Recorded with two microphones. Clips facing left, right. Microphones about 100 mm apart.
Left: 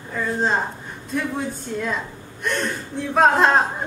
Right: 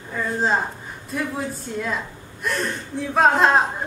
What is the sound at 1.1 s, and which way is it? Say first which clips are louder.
A woman's voice: left 1 dB; centre (ahead or behind).